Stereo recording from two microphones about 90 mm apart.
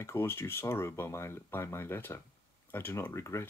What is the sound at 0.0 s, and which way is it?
Speech, 30° left (ahead or behind).